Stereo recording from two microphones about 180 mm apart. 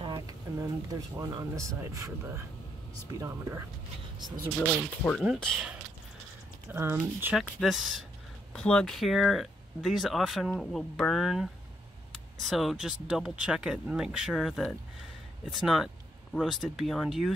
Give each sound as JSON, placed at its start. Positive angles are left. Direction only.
{"t": 0.0, "sound": "a sound", "side_deg": -25}
{"t": 1.1, "sound": "speech", "side_deg": -15}
{"t": 5.0, "sound": "speech", "side_deg": 0}
{"t": 6.7, "sound": "speech", "side_deg": -10}